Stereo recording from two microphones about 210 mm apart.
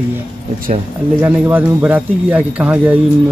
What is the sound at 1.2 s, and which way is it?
Speech, 10° right (ahead or behind).